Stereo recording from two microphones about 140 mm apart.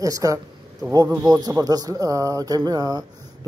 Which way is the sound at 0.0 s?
25° right (ahead or behind).